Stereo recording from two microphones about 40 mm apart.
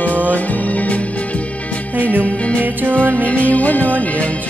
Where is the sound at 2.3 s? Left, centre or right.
Left.